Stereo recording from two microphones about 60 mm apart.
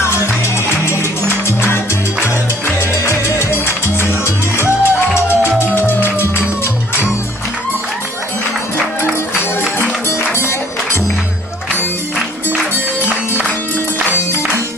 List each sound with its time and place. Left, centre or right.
0.8 s music: left
3.1 s music: left
10.3 s music: left